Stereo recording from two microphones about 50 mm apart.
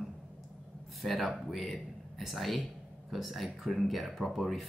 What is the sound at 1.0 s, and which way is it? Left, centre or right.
Speech, centre.